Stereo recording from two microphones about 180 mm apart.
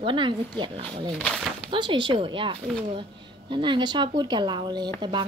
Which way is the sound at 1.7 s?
25° right (ahead or behind).